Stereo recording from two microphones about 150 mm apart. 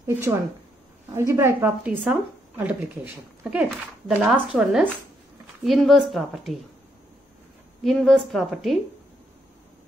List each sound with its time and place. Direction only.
0.0 s a woman's voice: 15° right (ahead or behind); by 6.6 s centre (ahead or behind)
7.8 s a woman's voice: centre (ahead or behind)